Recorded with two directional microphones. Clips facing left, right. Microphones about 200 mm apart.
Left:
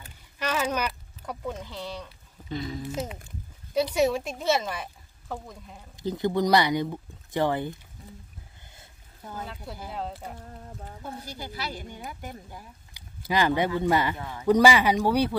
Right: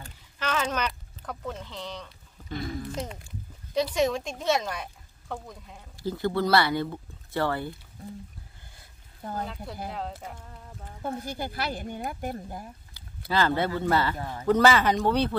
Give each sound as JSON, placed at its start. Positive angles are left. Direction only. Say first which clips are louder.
{"t": 0.4, "sound": "speech", "louder": "left 1 dB", "side_deg": 10}
{"t": 2.5, "sound": "speech", "louder": "left 1 dB", "side_deg": -50}
{"t": 2.9, "sound": "speech", "louder": "left 2 dB", "side_deg": 5}
{"t": 5.9, "sound": "speech", "louder": "left 1 dB", "side_deg": 20}
{"t": 9.8, "sound": "speech", "louder": "left 1 dB", "side_deg": 0}
{"t": 11.1, "sound": "speech", "louder": "right 7 dB", "side_deg": -50}
{"t": 13.0, "sound": "a sound", "louder": "even", "side_deg": 15}
{"t": 13.3, "sound": "speech", "louder": "left 1 dB", "side_deg": 15}
{"t": 14.1, "sound": "speech", "louder": "right 2 dB", "side_deg": -40}
{"t": 14.4, "sound": "speech", "louder": "left 1 dB", "side_deg": 10}